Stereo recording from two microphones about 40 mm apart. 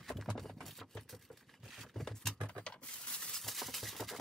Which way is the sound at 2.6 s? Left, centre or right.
Left.